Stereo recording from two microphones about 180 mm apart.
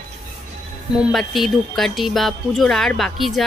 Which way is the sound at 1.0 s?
Centre (ahead or behind).